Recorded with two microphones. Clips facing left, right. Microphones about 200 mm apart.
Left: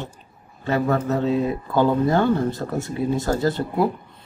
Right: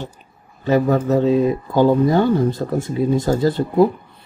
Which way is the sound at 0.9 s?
15° right (ahead or behind).